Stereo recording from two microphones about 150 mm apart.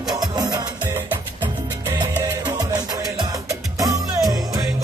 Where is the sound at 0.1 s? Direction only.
25° right (ahead or behind).